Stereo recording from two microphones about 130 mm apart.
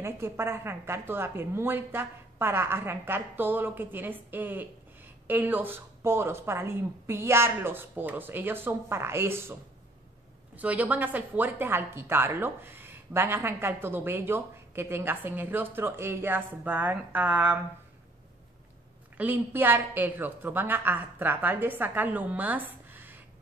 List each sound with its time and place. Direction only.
0.0 s speech: 20° right (ahead or behind)
19.1 s speech: 15° right (ahead or behind)